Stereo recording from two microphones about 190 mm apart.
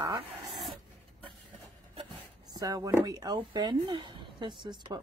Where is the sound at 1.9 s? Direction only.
25° right (ahead or behind).